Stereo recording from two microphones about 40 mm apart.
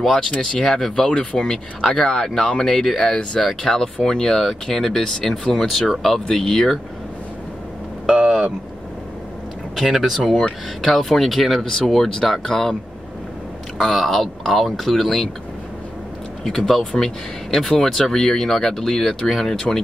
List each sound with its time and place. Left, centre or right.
0.0 s speech: centre
1.1 s speech: centre
8.1 s vehicle: centre
9.8 s speech: centre
10.8 s speech: centre
13.9 s speech: centre
16.4 s speech: centre